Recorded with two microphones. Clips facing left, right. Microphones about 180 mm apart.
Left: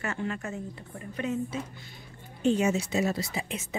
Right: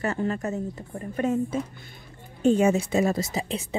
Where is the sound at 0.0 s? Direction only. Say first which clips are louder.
Right 6 dB; 35° right (ahead or behind).